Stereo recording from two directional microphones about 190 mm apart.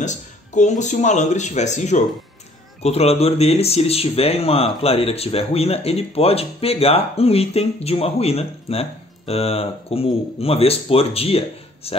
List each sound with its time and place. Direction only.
0.0 s speech: 40° left (ahead or behind)